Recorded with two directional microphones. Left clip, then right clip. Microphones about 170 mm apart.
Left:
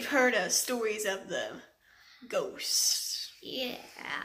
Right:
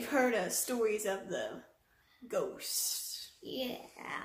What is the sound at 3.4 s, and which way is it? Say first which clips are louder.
Speech: left 1 dB; 20° right (ahead or behind).